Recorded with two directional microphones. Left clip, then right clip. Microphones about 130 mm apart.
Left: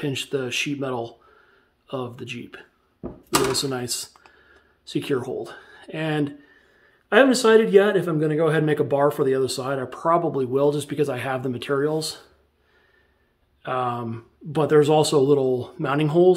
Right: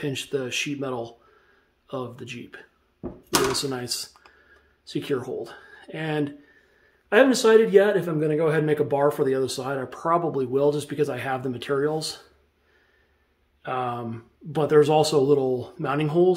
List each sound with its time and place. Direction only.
0.0 s speech: 30° left (ahead or behind)
13.6 s speech: 30° left (ahead or behind)